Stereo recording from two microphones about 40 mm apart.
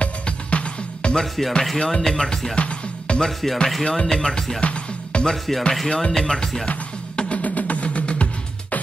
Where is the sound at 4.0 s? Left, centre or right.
Centre.